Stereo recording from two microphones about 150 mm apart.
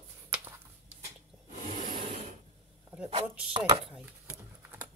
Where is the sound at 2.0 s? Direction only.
45° right (ahead or behind).